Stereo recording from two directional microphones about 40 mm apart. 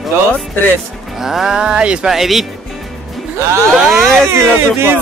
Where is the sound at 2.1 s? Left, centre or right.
Centre.